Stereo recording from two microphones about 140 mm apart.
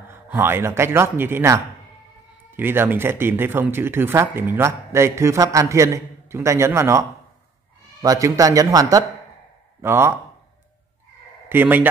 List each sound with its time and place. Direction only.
0.1 s a man's voice: 15° right (ahead or behind)
11.4 s speech: 15° right (ahead or behind)